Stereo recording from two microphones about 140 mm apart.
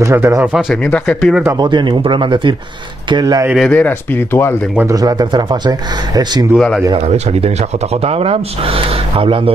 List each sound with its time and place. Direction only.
0.0 s speech: 20° right (ahead or behind)
0.5 s speech: 5° right (ahead or behind)
0.8 s speech: 10° left (ahead or behind)
1.6 s speech: 35° right (ahead or behind)
3.6 s speech: 10° left (ahead or behind)
4.8 s speech: 25° right (ahead or behind)
6.5 s speech: centre (ahead or behind)
7.0 s speech: 45° right (ahead or behind)